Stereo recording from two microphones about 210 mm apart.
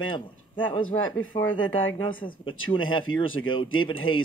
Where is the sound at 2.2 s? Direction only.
30° left (ahead or behind).